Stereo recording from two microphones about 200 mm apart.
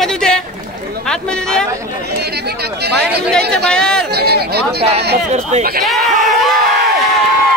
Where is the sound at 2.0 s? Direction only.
55° right (ahead or behind).